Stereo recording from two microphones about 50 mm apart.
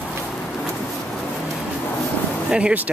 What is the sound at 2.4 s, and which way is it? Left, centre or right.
Speech, centre.